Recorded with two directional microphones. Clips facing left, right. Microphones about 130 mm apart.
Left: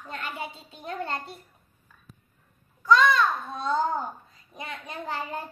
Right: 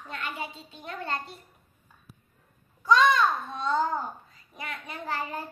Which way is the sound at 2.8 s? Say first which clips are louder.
Left 1 dB; 15° right (ahead or behind).